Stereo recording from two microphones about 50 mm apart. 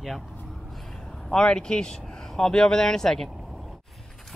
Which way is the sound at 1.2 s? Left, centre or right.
Centre.